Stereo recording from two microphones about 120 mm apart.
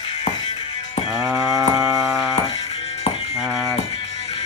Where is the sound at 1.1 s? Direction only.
15° right (ahead or behind).